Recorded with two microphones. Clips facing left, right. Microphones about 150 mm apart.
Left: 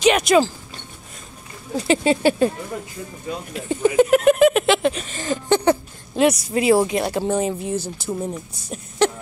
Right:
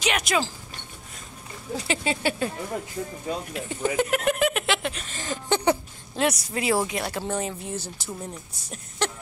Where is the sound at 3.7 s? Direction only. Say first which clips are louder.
Left 10 dB; 25° left (ahead or behind).